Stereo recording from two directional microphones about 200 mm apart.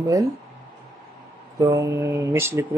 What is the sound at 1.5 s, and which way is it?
Speech, 15° right (ahead or behind).